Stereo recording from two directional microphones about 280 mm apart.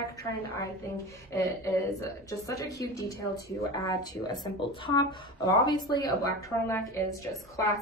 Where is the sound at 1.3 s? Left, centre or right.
Centre.